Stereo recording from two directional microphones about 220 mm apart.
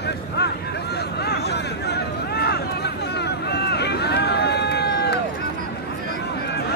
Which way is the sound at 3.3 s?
50° left (ahead or behind).